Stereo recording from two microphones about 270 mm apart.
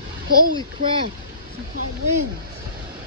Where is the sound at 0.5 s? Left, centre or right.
Centre.